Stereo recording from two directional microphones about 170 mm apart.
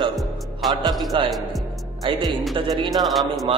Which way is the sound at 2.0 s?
25° right (ahead or behind).